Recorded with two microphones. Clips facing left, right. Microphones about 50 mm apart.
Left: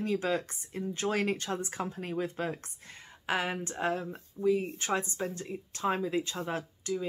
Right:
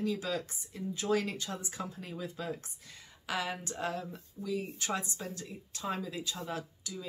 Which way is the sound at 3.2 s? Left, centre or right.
Left.